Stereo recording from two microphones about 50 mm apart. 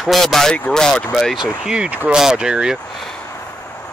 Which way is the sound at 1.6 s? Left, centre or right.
Centre.